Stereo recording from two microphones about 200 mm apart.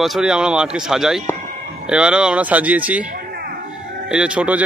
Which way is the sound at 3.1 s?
50° right (ahead or behind).